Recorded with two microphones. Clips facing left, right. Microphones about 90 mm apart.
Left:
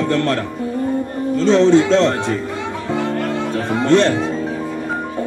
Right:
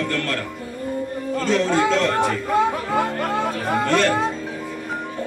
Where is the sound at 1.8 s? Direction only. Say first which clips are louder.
Left 5 dB; 25° left (ahead or behind).